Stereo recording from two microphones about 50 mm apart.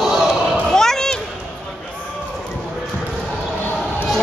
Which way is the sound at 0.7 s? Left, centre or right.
Centre.